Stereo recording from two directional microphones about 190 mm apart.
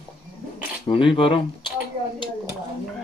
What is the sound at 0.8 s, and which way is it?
Speech, 25° left (ahead or behind).